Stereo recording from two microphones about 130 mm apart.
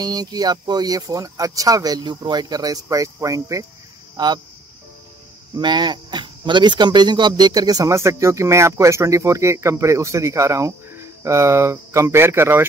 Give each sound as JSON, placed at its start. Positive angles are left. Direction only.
{"t": 0.0, "sound": "speech", "side_deg": -30}
{"t": 4.2, "sound": "speech", "side_deg": -35}
{"t": 5.5, "sound": "speech", "side_deg": -35}